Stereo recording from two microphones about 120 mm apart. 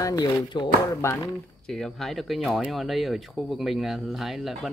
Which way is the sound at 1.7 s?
5° left (ahead or behind).